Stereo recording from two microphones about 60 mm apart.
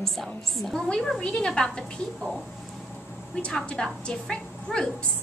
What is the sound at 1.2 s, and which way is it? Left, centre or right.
Speech, centre.